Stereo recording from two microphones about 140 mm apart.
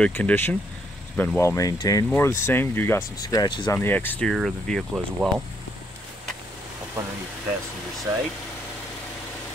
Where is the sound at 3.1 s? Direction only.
25° left (ahead or behind).